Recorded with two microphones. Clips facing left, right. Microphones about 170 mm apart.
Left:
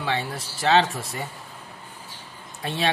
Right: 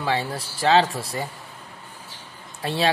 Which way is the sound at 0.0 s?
35° right (ahead or behind).